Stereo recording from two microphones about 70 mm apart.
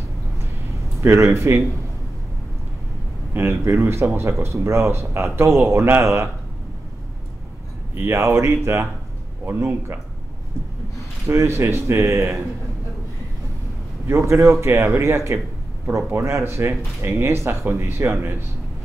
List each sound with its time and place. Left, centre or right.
1.0 s speech: right
3.3 s speech: right
7.9 s speech: right
9.5 s speech: right
11.2 s speech: right
14.0 s speech: right